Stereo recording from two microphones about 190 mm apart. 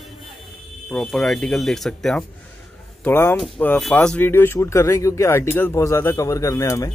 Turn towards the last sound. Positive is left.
turn(degrees=15)  # may be behind; listen again after turning